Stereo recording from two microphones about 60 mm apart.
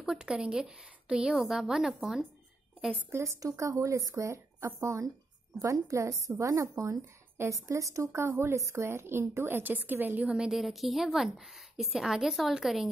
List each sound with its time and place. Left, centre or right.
0.0 s a woman's voice: centre
3.3 s speech: right
5.6 s speech: right
8.5 s a woman's voice: right
10.3 s a woman's voice: centre
10.6 s a woman's voice: centre